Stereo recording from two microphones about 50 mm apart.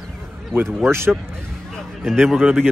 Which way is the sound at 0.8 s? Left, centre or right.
Right.